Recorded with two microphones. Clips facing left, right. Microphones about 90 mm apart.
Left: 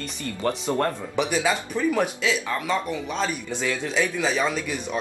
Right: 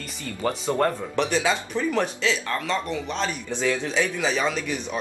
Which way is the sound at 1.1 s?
10° left (ahead or behind).